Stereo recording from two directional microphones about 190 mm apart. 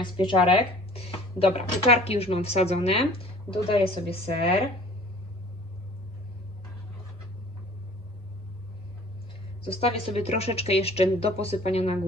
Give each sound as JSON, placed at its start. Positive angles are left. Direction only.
{"t": 0.0, "sound": "speech", "side_deg": 25}
{"t": 9.6, "sound": "speech", "side_deg": 30}